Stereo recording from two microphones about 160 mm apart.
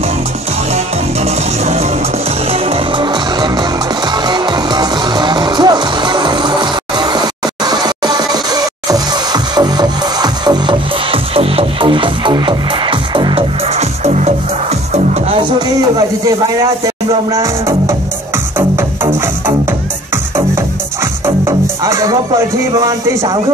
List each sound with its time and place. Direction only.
0.7 s music: 40° right (ahead or behind)
17.3 s music: 20° right (ahead or behind)
20.3 s music: 15° right (ahead or behind)